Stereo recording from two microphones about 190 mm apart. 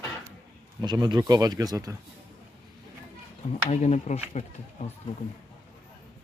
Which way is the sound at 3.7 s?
35° left (ahead or behind).